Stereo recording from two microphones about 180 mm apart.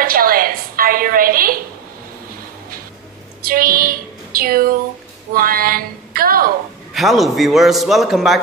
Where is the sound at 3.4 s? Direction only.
55° right (ahead or behind).